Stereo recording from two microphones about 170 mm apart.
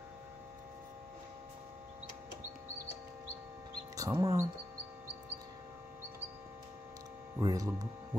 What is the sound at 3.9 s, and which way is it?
Speech, 20° right (ahead or behind).